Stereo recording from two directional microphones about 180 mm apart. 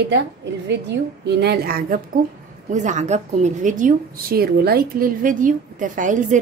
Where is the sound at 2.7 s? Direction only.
40° right (ahead or behind).